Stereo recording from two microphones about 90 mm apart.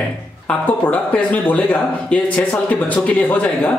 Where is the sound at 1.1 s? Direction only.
15° left (ahead or behind).